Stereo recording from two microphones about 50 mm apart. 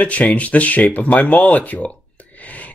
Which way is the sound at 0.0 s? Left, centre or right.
Left.